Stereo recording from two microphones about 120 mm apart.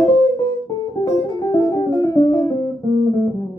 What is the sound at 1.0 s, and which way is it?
Music, 35° left (ahead or behind).